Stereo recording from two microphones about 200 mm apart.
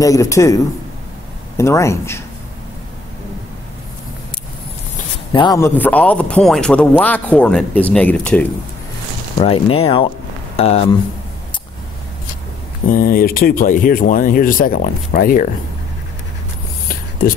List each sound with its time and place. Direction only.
0.0 s a man's voice: 15° left (ahead or behind)
1.6 s a man's voice: 15° left (ahead or behind)
5.3 s a man's voice: 20° left (ahead or behind)
9.4 s speech: 30° left (ahead or behind)
12.8 s speech: 45° left (ahead or behind)